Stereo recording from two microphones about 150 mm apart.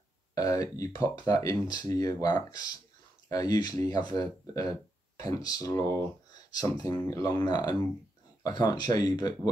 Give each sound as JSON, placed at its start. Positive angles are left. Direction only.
{"t": 0.3, "sound": "speech", "side_deg": 25}